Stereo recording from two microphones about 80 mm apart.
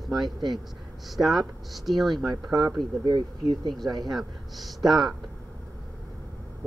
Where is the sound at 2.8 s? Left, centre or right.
Right.